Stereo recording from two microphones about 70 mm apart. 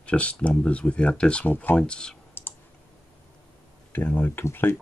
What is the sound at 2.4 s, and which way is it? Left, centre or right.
Clicking, left.